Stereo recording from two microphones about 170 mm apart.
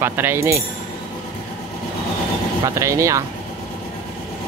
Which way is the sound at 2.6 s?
20° right (ahead or behind).